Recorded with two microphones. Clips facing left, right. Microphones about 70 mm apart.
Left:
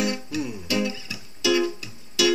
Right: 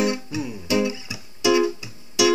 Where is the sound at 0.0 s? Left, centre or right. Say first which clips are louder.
Right 3 dB; centre.